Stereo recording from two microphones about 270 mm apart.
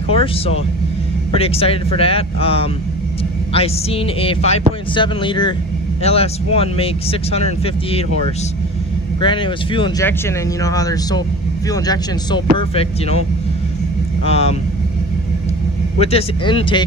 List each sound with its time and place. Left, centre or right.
0.1 s speech: left
9.2 s speech: centre
14.2 s speech: left
16.0 s speech: left